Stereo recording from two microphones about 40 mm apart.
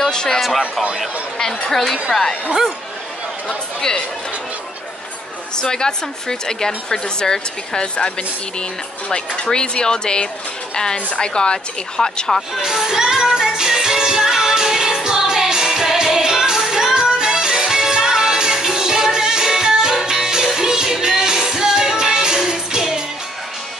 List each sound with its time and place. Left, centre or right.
0.0 s a sound: centre
1.7 s speech: centre
3.4 s speech: centre
5.6 s speech: centre
9.4 s speech: left
12.6 s music: centre